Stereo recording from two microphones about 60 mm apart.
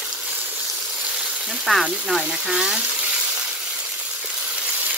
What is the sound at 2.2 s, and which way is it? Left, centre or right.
Speech, centre.